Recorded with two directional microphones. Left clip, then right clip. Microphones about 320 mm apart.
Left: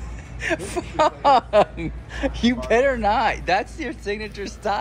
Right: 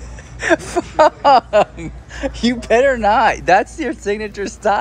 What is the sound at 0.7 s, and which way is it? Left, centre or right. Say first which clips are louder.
Speech: right 6 dB; centre.